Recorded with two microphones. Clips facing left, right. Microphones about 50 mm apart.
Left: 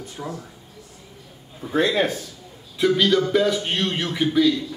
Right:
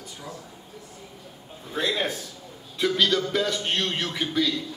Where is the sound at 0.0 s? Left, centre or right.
Left.